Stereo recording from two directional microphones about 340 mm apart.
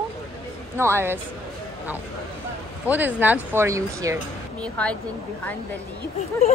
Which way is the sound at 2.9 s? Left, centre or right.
Centre.